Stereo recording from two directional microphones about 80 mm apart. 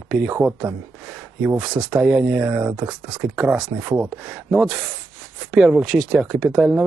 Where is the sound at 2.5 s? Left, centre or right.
Right.